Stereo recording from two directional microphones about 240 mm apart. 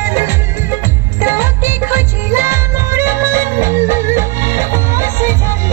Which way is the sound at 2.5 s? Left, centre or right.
Centre.